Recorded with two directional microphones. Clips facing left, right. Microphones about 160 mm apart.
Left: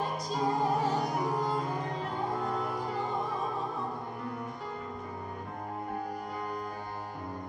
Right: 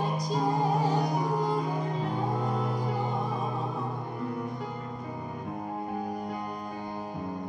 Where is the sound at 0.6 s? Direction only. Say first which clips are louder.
Right 2 dB; centre (ahead or behind).